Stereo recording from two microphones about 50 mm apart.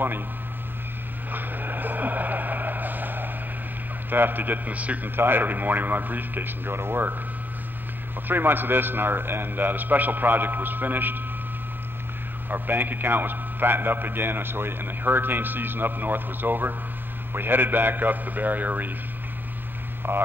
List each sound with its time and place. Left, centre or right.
1.3 s vehicle: right
4.1 s a man's voice: right
5.1 s a man's voice: right
8.3 s a man's voice: right
12.4 s a man's voice: right
20.0 s speech: right